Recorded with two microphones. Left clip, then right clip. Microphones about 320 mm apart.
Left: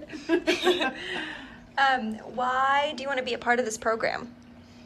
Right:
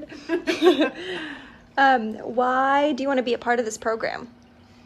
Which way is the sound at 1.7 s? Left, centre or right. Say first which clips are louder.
Right 5 dB; centre.